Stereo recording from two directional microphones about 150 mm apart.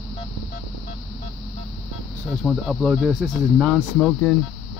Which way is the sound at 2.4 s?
5° left (ahead or behind).